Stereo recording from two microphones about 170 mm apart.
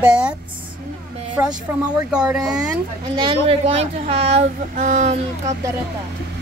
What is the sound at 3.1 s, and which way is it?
A child's voice, 30° right (ahead or behind).